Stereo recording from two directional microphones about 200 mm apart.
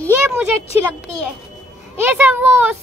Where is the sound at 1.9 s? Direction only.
10° right (ahead or behind).